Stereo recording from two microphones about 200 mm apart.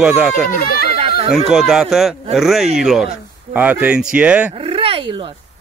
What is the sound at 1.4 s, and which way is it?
Speech, centre (ahead or behind).